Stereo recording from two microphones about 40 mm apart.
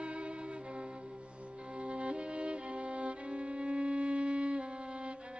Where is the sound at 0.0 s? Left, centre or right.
Right.